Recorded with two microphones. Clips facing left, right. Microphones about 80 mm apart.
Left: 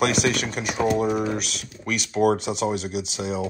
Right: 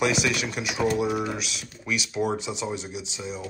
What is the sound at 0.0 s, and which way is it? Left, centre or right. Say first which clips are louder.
Chopping: left 3 dB; left.